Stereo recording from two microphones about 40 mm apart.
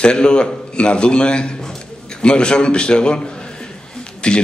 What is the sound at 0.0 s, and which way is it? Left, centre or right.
A man's voice, left.